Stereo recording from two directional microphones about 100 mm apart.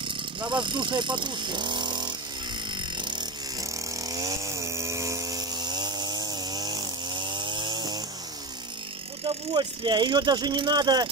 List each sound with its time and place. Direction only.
0.4 s speech: 50° right (ahead or behind)
3.0 s a sound: 50° right (ahead or behind)
3.6 s chainsaw: 35° right (ahead or behind)
9.2 s speech: 55° right (ahead or behind)